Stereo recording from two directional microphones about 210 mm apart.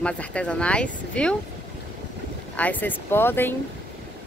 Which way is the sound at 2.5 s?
10° left (ahead or behind).